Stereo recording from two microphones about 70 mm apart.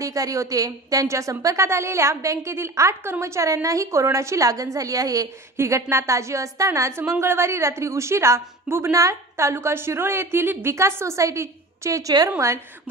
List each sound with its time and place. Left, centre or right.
0.0 s a woman's voice: right
5.6 s a woman's voice: right
7.0 s a woman's voice: right